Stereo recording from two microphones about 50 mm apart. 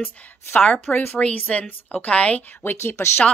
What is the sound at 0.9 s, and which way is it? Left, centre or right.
Speech, left.